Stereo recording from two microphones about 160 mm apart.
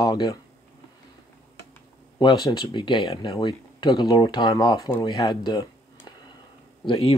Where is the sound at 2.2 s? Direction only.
25° left (ahead or behind).